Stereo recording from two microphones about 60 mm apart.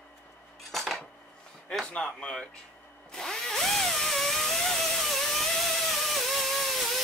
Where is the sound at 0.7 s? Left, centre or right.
Centre.